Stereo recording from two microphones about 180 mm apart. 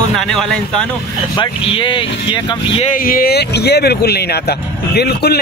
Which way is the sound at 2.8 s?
50° left (ahead or behind).